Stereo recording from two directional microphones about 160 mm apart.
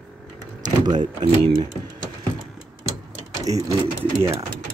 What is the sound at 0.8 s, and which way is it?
Speech, 25° right (ahead or behind).